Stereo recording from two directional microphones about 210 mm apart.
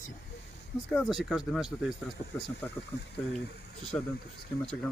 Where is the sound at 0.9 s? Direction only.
Centre (ahead or behind).